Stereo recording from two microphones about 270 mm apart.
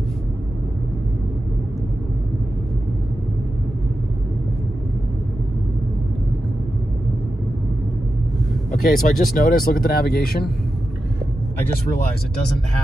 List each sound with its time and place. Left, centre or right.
8.8 s speech: left